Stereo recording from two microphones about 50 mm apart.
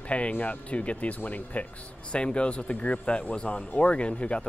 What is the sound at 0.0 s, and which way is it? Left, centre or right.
Speech, left.